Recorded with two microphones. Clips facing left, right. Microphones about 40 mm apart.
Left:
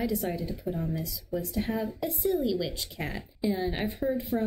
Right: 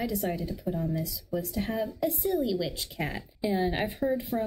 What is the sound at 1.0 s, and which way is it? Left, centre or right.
A woman's voice, centre.